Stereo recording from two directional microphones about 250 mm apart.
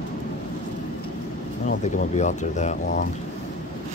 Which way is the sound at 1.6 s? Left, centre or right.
Left.